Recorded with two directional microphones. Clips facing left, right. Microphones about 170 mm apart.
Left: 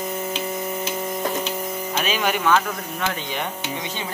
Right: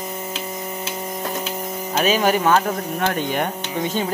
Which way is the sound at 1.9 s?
40° right (ahead or behind).